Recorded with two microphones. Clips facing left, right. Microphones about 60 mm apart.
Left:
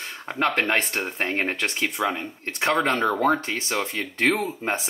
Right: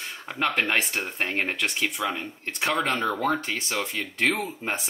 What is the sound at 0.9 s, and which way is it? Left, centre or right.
Speech, centre.